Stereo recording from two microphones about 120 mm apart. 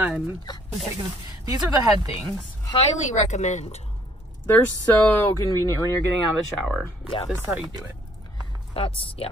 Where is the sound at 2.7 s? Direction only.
65° left (ahead or behind).